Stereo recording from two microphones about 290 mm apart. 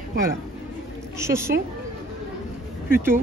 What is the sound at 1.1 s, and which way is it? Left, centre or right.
Speech, centre.